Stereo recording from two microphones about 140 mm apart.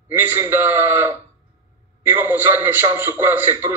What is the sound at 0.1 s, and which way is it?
A man's voice, 15° right (ahead or behind).